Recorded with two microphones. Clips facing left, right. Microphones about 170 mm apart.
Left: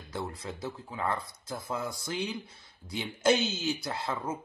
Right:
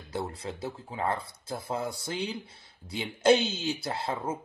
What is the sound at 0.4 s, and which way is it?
Speech, 30° right (ahead or behind).